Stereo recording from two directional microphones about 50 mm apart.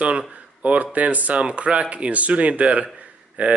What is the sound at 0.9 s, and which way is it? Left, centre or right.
A man's voice, right.